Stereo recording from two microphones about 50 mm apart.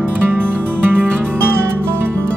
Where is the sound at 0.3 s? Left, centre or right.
Right.